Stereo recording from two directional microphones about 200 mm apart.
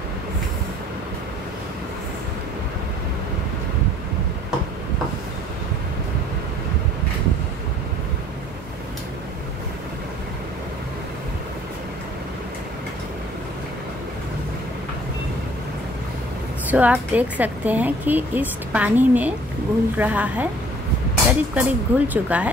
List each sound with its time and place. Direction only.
16.6 s a woman's voice: 10° right (ahead or behind)